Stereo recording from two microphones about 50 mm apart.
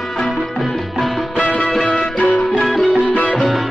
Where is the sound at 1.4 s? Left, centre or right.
Left.